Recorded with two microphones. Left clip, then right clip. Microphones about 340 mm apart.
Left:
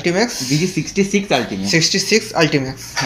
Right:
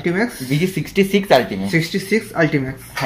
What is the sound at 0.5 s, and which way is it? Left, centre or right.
Speech, right.